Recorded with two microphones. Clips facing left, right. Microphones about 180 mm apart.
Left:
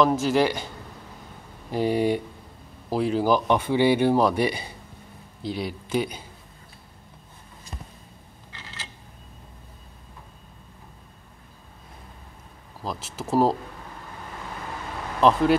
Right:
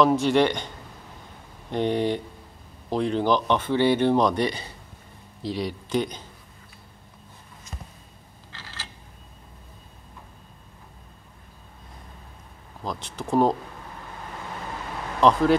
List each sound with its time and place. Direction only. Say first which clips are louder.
0.0 s speech: right 1 dB; centre (ahead or behind)
1.7 s speech: left 1 dB; 5° left (ahead or behind)
8.5 s a sound: even; 20° left (ahead or behind)
12.8 s speech: even; 5° left (ahead or behind)
15.1 s speech: even; centre (ahead or behind)